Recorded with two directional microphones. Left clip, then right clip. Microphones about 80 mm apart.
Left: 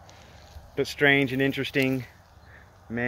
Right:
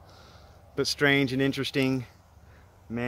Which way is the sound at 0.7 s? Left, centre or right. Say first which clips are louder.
Left 2 dB; right.